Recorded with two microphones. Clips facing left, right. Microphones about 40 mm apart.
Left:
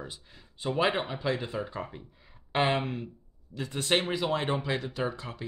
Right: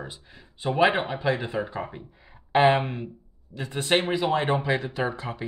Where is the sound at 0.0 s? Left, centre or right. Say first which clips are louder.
Right 3 dB; centre.